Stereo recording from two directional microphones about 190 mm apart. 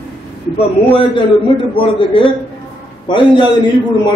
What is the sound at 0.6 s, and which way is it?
A man's voice, 30° left (ahead or behind).